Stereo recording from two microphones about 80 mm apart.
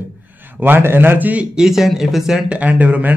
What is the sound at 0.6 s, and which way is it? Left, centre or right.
Speech, right.